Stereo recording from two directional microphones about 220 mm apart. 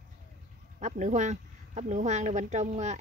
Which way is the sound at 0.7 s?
35° right (ahead or behind).